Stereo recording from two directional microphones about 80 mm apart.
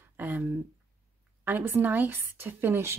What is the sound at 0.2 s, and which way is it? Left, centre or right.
Speech, right.